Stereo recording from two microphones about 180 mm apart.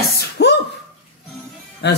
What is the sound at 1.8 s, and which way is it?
Speech, 70° left (ahead or behind).